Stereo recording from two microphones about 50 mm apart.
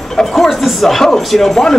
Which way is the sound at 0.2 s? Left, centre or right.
Centre.